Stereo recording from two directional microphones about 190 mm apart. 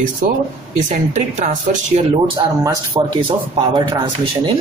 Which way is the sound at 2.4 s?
25° right (ahead or behind).